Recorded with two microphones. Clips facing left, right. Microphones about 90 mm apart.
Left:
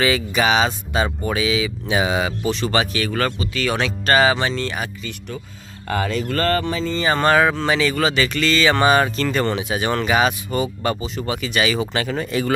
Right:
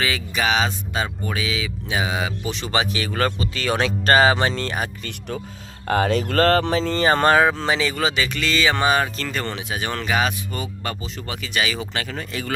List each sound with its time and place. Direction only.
0.0 s music: 5° left (ahead or behind)
1.0 s speech: 10° left (ahead or behind)
2.5 s speech: 15° right (ahead or behind); by 4.8 s 35° right (ahead or behind)
5.9 s speech: 60° right (ahead or behind); by 7.0 s 75° right (ahead or behind)
7.0 s speech: 35° right (ahead or behind)
7.3 s speech: 25° right (ahead or behind); by 11.5 s 15° left (ahead or behind)
11.5 s speech: centre (ahead or behind)
11.9 s speech: 20° left (ahead or behind)